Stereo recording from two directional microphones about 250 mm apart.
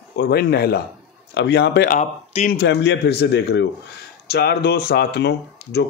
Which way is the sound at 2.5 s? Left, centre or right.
Left.